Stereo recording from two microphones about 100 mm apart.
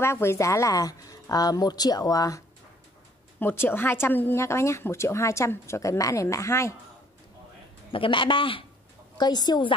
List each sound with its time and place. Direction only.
0.0 s speech: 25° left (ahead or behind)
3.3 s speech: 20° left (ahead or behind)
7.9 s a woman's voice: 60° left (ahead or behind)
9.2 s a woman's voice: 45° left (ahead or behind)